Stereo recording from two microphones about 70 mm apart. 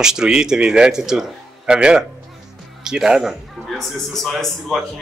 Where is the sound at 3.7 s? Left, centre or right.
Centre.